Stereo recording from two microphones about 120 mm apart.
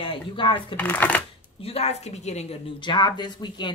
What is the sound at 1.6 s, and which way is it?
Speech, 60° left (ahead or behind).